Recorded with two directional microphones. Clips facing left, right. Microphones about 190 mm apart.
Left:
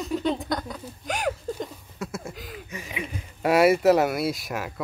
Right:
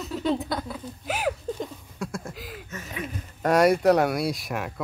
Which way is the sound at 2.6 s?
10° left (ahead or behind).